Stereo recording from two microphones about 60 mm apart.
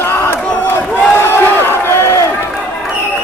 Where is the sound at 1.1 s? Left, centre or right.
Left.